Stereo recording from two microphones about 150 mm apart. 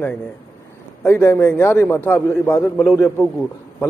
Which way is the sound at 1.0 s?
15° left (ahead or behind).